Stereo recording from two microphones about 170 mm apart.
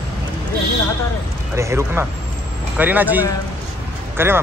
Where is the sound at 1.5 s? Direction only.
15° right (ahead or behind).